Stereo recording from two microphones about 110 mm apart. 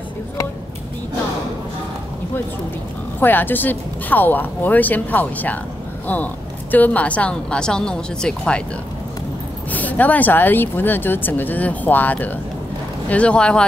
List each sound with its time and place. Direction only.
3.2 s speech: 15° left (ahead or behind)
9.7 s speech: 15° left (ahead or behind)